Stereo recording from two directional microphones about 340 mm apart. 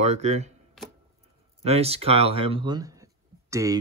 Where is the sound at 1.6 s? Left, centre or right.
Centre.